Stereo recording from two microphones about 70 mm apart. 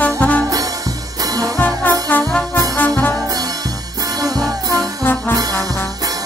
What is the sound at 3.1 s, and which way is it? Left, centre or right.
Music, right.